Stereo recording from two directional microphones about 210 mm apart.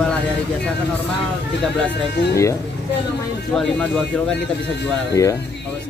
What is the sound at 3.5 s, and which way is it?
Speech, centre (ahead or behind).